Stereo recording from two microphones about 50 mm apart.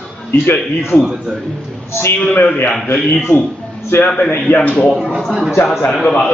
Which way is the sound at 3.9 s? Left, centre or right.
Left.